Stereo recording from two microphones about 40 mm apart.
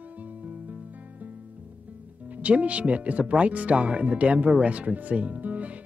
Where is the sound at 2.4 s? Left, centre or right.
Right.